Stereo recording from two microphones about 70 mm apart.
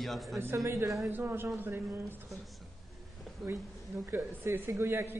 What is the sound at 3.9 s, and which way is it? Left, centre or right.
A woman's voice, right.